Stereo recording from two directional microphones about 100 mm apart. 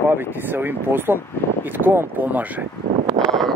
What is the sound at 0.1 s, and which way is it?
Speech, 20° right (ahead or behind).